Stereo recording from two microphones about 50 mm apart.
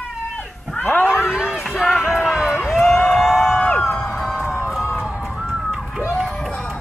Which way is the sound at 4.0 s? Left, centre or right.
Centre.